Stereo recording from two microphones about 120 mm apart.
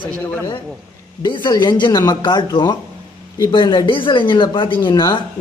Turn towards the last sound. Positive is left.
turn(degrees=40)  # may be behind; listen again after turning